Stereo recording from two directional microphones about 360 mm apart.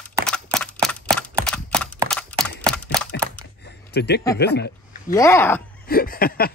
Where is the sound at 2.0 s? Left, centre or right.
Centre.